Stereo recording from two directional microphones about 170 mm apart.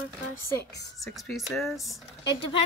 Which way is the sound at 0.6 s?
80° left.